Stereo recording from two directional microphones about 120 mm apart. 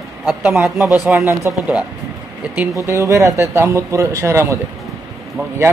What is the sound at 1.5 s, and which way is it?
Speech, 20° right (ahead or behind).